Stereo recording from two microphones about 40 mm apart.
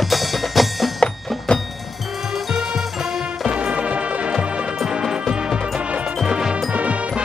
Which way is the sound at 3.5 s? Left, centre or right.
Right.